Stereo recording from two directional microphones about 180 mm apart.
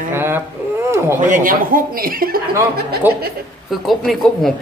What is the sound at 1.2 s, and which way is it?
Speech, 45° right (ahead or behind).